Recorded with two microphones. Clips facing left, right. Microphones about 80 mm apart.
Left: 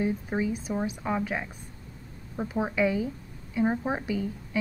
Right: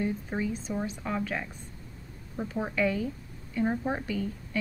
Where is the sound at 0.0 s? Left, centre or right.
Centre.